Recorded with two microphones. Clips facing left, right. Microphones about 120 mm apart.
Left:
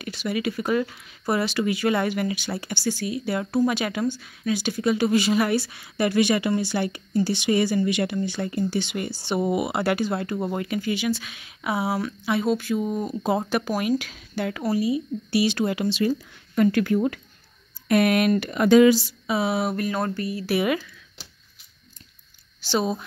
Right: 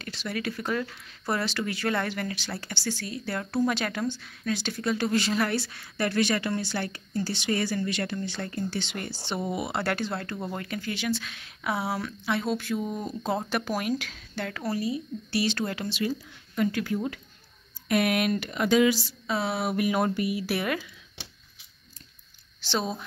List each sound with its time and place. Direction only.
0.0 s speech: 10° left (ahead or behind)
16.5 s speech: 60° left (ahead or behind)
17.8 s speech: 45° left (ahead or behind)
19.0 s speech: 10° left (ahead or behind)
19.7 s a sound: 10° right (ahead or behind)
20.4 s speech: 5° left (ahead or behind)
22.6 s a woman's voice: 5° left (ahead or behind)